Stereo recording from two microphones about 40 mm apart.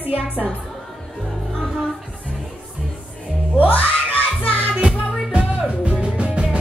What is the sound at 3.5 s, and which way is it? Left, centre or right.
Music, left.